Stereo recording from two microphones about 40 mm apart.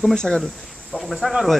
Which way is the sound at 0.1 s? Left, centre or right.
Centre.